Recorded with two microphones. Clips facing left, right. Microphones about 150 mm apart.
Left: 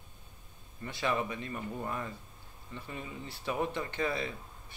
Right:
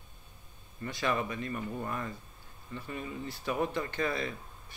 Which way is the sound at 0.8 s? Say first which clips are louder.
Right 1 dB; 25° left (ahead or behind).